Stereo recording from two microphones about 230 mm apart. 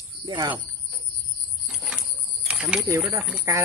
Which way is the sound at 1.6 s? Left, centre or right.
Centre.